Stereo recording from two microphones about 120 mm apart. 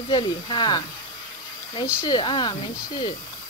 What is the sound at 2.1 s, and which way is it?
Speech, 40° left (ahead or behind).